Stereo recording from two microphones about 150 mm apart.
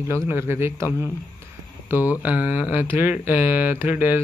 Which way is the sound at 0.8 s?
20° left (ahead or behind).